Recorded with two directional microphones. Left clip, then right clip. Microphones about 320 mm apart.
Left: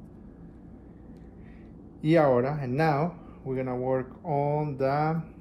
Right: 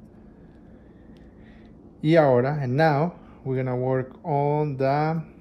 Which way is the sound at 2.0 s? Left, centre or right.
Right.